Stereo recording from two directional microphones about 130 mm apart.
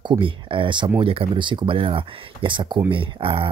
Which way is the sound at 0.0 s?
40° right (ahead or behind).